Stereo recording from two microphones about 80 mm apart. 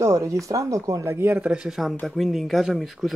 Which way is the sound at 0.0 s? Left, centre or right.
Right.